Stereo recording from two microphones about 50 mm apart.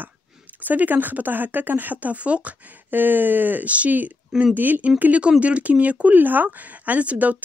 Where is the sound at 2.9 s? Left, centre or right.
Right.